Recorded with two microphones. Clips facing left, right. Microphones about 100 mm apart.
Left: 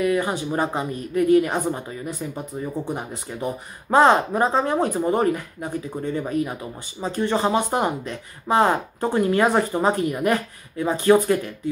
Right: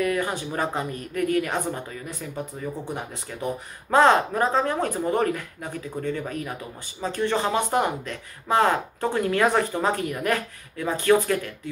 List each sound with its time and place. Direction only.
0.0 s speech: 20° left (ahead or behind)
3.9 s speech: 15° left (ahead or behind)